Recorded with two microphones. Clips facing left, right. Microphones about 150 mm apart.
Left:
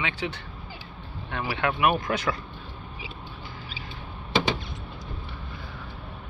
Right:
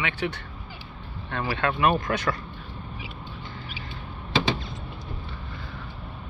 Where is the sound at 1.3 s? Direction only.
15° left (ahead or behind).